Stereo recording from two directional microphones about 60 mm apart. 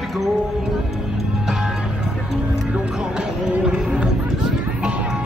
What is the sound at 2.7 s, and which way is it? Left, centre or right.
Music, centre.